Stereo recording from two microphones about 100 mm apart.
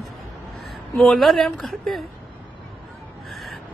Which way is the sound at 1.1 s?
Centre (ahead or behind).